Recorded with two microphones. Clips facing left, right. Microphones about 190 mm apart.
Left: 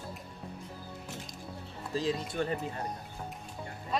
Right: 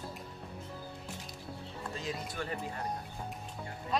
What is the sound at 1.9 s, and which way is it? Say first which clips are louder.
Speech: left 9 dB; 35° left (ahead or behind).